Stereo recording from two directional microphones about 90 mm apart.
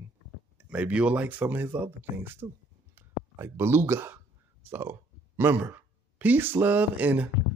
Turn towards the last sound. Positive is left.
turn(degrees=-15)  # may be behind; listen again after turning